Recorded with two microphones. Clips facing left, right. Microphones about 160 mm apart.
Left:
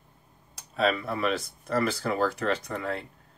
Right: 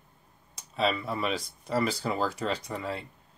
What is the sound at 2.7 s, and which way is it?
Speech, 60° left (ahead or behind).